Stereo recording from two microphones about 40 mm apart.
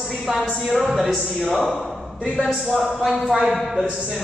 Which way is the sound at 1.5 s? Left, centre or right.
Centre.